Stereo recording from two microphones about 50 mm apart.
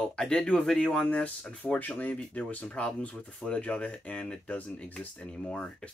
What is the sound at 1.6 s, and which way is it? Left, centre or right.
Speech, left.